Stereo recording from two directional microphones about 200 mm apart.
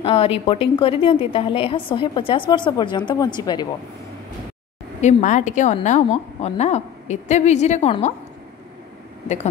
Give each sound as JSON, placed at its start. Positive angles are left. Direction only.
{"t": 0.0, "sound": "a woman's voice", "side_deg": 30}
{"t": 5.0, "sound": "a woman's voice", "side_deg": 40}